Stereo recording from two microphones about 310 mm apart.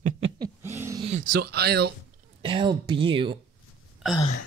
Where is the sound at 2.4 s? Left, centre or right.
Centre.